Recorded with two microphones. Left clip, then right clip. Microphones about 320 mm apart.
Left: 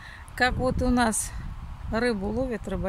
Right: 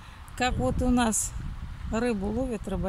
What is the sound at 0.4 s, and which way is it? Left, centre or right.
Speech, centre.